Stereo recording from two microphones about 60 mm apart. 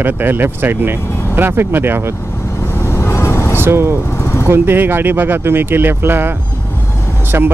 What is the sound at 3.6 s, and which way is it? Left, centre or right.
Speech, right.